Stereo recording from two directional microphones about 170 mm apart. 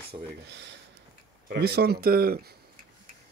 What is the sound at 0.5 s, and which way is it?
Speech, 90° right.